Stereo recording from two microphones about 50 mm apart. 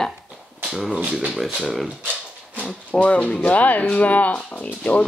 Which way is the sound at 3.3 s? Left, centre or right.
Left.